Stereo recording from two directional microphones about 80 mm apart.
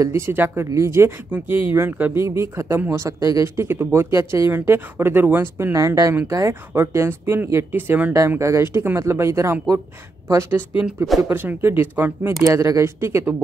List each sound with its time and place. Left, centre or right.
0.0 s speech: right
2.1 s speech: right
3.4 s speech: right
5.8 s speech: right
8.4 s speech: right
11.2 s speech: right
12.4 s speech: right